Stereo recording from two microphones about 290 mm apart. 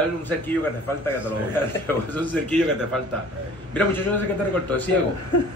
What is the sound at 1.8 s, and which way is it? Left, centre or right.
Speech, centre.